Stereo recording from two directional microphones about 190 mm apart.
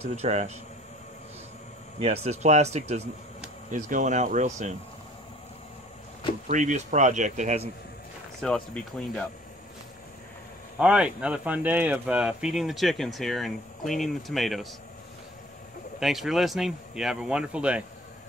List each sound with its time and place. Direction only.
0.1 s speech: 35° right (ahead or behind)
2.0 s speech: 35° right (ahead or behind)
6.4 s speech: 40° right (ahead or behind)
8.4 s speech: 5° left (ahead or behind)
10.8 s speech: 5° right (ahead or behind)
16.0 s speech: centre (ahead or behind)